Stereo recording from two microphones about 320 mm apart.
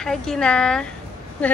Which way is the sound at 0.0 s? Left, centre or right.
Centre.